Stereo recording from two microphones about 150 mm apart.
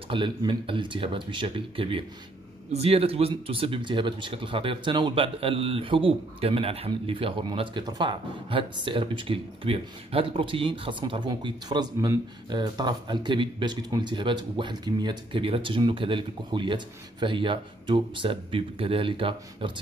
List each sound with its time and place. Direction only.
0.1 s speech: 35° right (ahead or behind)